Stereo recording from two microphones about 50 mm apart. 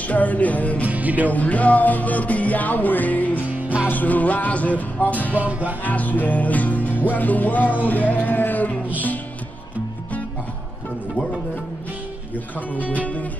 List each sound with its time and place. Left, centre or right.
0.0 s music: left
0.8 s music: right
1.3 s music: left
5.4 s music: right
5.9 s music: left
12.9 s music: left